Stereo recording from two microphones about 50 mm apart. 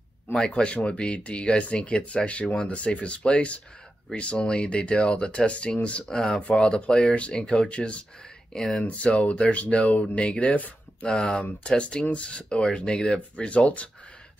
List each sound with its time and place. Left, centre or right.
0.3 s speech: centre
6.0 s speech: centre; by 11.1 s left
11.1 s speech: centre